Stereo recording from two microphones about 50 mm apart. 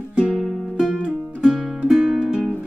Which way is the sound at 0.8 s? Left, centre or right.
Right.